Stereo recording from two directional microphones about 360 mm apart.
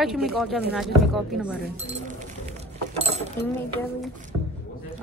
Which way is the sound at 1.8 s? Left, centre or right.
Centre.